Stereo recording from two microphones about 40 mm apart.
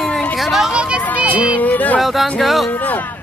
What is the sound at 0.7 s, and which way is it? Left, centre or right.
Speech, right.